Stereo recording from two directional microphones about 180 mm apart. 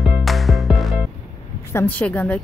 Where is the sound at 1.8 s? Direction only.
10° left (ahead or behind).